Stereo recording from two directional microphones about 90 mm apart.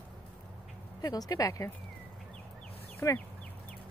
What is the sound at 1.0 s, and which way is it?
Speech, 45° left (ahead or behind).